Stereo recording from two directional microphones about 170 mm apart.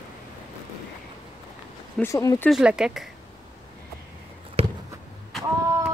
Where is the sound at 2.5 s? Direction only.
5° right (ahead or behind).